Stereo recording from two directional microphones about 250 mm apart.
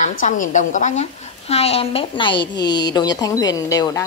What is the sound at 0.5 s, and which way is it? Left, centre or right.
A woman's voice, left.